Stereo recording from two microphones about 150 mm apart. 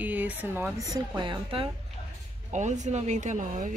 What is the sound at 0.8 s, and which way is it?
Speech, 30° right (ahead or behind).